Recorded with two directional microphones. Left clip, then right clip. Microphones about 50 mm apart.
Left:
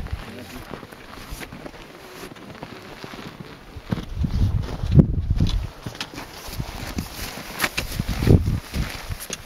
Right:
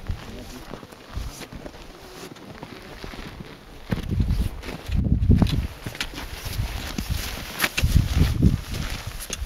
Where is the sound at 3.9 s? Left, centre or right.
Right.